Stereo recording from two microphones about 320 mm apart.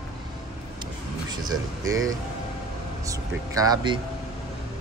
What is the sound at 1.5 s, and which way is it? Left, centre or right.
Speech, right.